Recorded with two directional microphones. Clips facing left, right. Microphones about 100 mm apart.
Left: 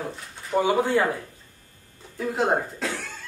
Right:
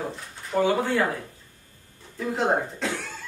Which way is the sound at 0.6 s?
15° left (ahead or behind).